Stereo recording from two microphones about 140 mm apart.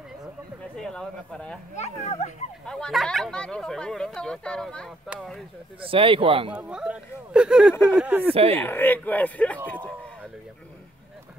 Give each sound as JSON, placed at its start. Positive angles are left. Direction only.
{"t": 0.7, "sound": "speech", "side_deg": 5}
{"t": 1.8, "sound": "a child's voice", "side_deg": 50}
{"t": 2.6, "sound": "speech", "side_deg": 5}
{"t": 5.8, "sound": "speech", "side_deg": -40}
{"t": 6.5, "sound": "speech", "side_deg": -5}
{"t": 8.3, "sound": "speech", "side_deg": -45}
{"t": 8.5, "sound": "speech", "side_deg": 15}